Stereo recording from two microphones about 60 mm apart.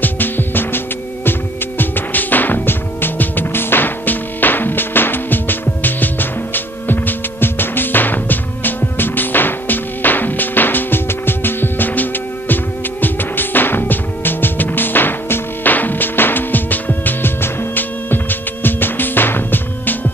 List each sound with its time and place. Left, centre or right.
0.0 s music: left